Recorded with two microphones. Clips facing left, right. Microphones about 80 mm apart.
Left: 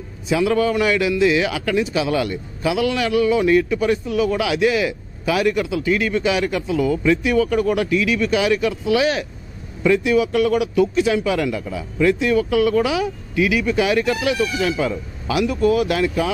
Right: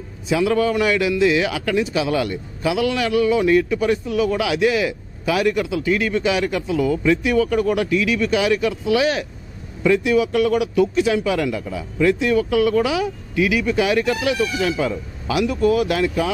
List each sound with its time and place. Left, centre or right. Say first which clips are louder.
0.3 s a man's voice: even; centre